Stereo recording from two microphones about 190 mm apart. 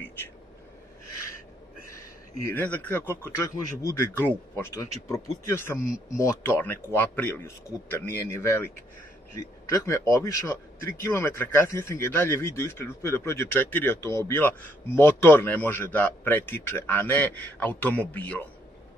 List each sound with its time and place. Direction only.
1.9 s speech: 15° left (ahead or behind)
9.7 s speech: 15° left (ahead or behind)